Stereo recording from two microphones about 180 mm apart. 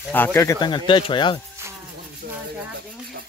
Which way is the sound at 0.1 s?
10° left (ahead or behind).